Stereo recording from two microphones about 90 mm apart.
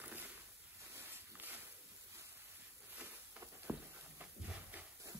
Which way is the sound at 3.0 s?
20° right (ahead or behind).